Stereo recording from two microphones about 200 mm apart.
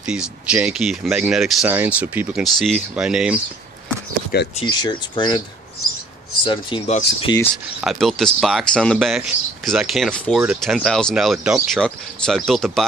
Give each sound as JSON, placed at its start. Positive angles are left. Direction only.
{"t": 0.0, "sound": "speech", "side_deg": -5}
{"t": 4.3, "sound": "speech", "side_deg": 50}
{"t": 4.6, "sound": "speech", "side_deg": 20}
{"t": 6.4, "sound": "speech", "side_deg": 25}
{"t": 7.8, "sound": "speech", "side_deg": 0}